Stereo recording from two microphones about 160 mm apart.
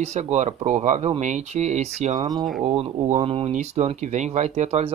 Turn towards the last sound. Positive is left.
turn(degrees=-40)  # may be behind; listen again after turning